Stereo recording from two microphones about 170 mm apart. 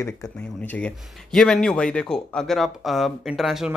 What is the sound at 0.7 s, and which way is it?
Speech, 5° left (ahead or behind).